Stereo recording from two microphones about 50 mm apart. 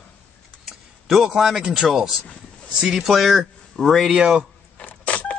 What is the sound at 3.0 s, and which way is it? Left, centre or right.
Speech, centre.